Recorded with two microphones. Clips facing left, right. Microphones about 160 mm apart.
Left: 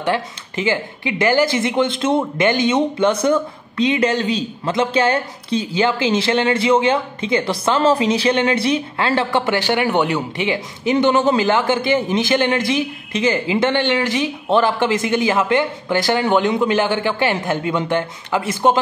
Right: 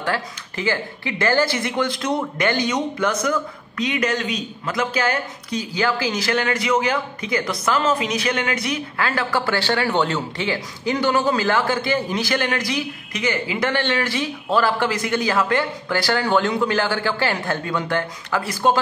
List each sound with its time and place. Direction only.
0.0 s speech: 20° left (ahead or behind)